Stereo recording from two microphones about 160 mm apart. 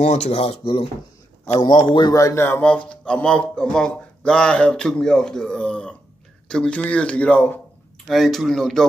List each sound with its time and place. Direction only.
0.0 s a man's voice: 45° left (ahead or behind); by 8.8 s 5° left (ahead or behind)